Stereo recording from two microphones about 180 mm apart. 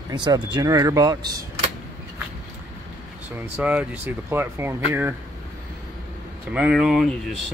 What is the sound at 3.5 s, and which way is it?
Speech, 10° right (ahead or behind).